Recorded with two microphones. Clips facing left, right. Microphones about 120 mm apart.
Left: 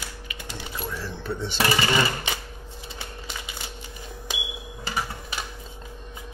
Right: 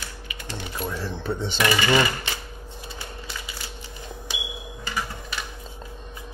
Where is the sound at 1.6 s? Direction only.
30° left (ahead or behind).